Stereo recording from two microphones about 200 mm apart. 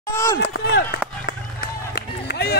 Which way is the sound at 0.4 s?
55° left (ahead or behind).